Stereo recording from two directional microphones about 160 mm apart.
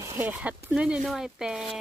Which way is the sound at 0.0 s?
15° right (ahead or behind).